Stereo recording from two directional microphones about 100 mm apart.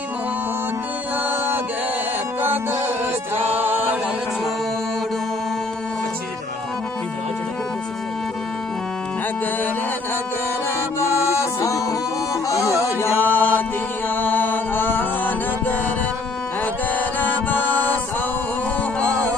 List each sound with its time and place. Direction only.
3.3 s music: 90° right
11.0 s music: 30° left (ahead or behind)
17.2 s music: 15° left (ahead or behind)
18.9 s music: 10° left (ahead or behind)